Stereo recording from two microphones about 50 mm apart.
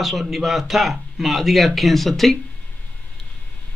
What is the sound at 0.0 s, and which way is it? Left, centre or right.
A man's voice, centre.